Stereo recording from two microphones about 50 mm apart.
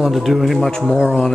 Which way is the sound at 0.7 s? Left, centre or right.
Centre.